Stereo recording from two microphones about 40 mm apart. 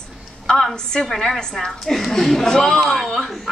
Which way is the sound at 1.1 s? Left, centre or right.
Centre.